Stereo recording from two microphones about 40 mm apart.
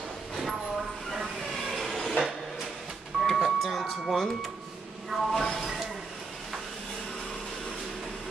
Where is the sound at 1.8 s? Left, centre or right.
Centre.